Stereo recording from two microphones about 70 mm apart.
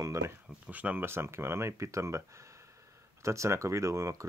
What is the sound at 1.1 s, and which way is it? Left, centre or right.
Speech, right.